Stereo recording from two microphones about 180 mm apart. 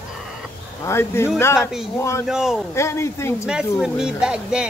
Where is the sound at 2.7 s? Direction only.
15° left (ahead or behind).